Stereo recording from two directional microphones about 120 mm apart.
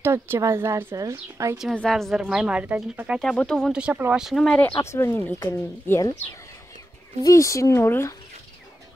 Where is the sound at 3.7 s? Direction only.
10° right (ahead or behind).